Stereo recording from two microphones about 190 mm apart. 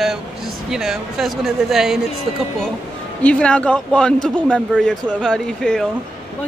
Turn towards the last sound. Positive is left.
turn(degrees=5)  # may be behind; listen again after turning